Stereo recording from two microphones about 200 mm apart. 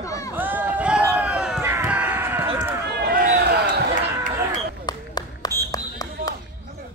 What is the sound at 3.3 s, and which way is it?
Basketball bounce, 55° right (ahead or behind).